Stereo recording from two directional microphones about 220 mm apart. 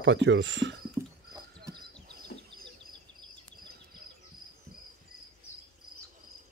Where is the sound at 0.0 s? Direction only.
55° right (ahead or behind).